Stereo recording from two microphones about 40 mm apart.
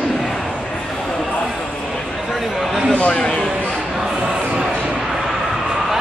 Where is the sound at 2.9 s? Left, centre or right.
Left.